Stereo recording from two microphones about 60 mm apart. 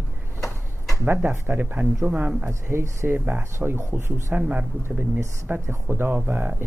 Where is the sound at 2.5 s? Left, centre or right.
Right.